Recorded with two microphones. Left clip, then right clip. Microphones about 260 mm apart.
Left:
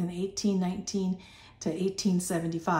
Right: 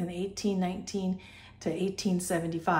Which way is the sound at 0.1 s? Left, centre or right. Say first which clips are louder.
Left 2 dB; centre.